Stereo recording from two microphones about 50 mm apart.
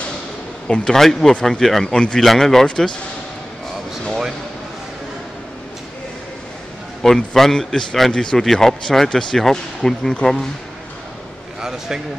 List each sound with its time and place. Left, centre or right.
0.7 s a man's voice: centre
2.6 s a man's voice: centre
7.0 s a man's voice: centre